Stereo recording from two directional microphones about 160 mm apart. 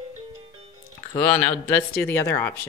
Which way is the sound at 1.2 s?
10° left (ahead or behind).